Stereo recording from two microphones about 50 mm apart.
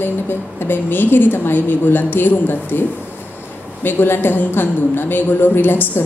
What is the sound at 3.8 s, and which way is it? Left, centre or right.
A woman's voice, left.